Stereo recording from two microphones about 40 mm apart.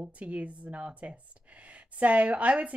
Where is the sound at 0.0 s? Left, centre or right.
Right.